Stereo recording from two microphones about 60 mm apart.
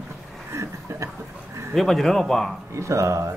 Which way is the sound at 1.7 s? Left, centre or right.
Centre.